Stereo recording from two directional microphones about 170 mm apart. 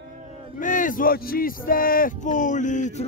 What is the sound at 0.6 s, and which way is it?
Speech, 50° left (ahead or behind).